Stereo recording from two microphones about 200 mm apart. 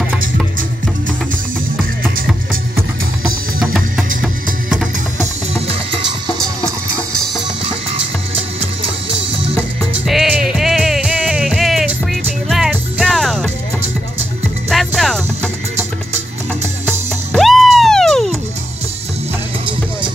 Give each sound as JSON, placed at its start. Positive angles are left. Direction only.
{"t": 3.5, "sound": "music", "side_deg": -5}
{"t": 10.0, "sound": "music", "side_deg": 0}
{"t": 14.7, "sound": "music", "side_deg": 0}
{"t": 17.3, "sound": "music", "side_deg": 0}